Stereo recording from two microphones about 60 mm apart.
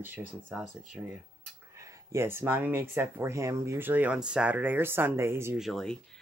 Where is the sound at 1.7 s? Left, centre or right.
Right.